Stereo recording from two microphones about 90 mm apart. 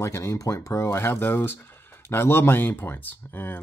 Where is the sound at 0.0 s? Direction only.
30° left (ahead or behind).